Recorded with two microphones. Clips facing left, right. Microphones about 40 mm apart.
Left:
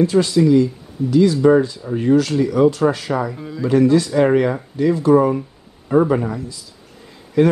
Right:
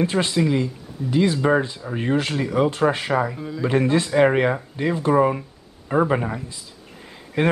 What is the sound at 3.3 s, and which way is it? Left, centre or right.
Speech, centre.